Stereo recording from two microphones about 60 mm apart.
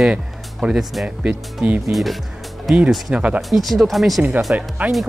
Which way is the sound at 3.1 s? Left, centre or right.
Right.